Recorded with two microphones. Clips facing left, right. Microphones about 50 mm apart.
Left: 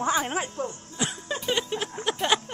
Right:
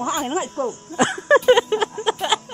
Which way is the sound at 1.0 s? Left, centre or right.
Right.